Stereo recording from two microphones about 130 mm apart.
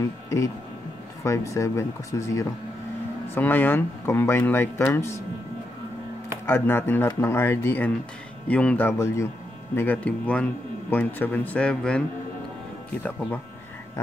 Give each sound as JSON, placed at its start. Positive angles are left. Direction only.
{"t": 0.0, "sound": "speech", "side_deg": 25}
{"t": 6.4, "sound": "speech", "side_deg": 15}
{"t": 13.0, "sound": "speech", "side_deg": 15}